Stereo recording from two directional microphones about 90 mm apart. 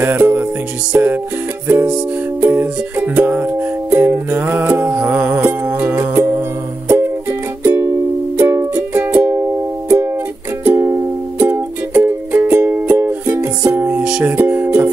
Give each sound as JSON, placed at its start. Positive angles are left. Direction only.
{"t": 0.0, "sound": "music", "side_deg": -20}
{"t": 2.4, "sound": "music", "side_deg": -25}
{"t": 9.1, "sound": "music", "side_deg": -20}
{"t": 9.4, "sound": "music", "side_deg": -30}
{"t": 14.0, "sound": "music", "side_deg": -10}